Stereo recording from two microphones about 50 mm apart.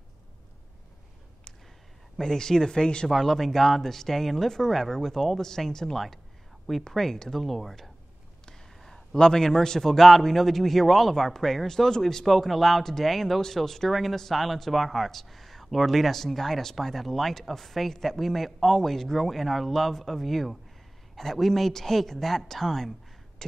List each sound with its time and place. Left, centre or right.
2.1 s speech: centre
3.1 s a man's voice: centre